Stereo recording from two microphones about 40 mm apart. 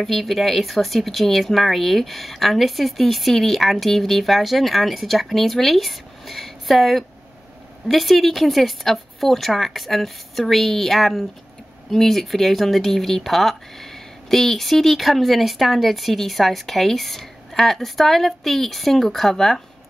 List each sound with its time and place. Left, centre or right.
0.0 s speech: centre